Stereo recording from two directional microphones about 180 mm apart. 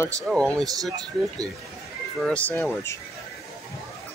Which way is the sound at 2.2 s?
5° left (ahead or behind).